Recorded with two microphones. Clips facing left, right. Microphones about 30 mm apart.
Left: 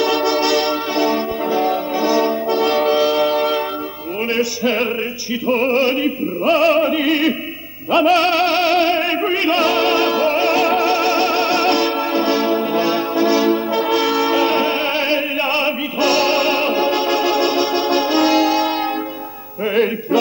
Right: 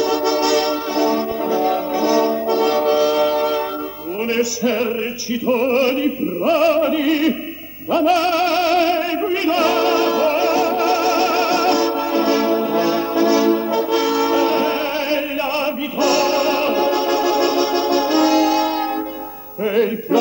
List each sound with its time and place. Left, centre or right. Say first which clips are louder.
0.0 s music: left 1 dB; left
0.5 s music: even; left
3.3 s music: left 1 dB; left
4.2 s music: even; left
9.0 s opera: left 2 dB; left
9.6 s music: right 1 dB; left
10.4 s music: left 2 dB; left
10.8 s music: even; left
12.0 s music: even; left
15.1 s opera: left 2 dB; left
16.6 s music: even; left
19.6 s music: even; left